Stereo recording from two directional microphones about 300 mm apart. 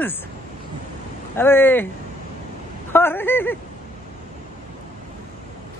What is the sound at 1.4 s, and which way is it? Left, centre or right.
Speech, centre.